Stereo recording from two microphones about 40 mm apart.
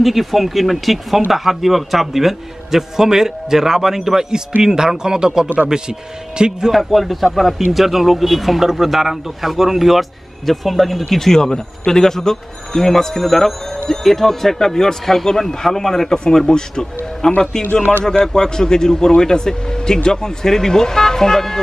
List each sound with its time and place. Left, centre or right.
0.0 s a man's voice: centre; by 6.7 s right
6.7 s a man's voice: centre